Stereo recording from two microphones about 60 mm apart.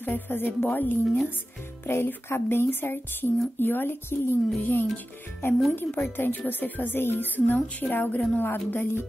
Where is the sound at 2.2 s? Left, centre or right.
Left.